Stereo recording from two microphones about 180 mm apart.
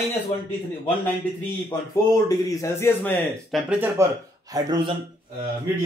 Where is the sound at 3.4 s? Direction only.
5° right (ahead or behind).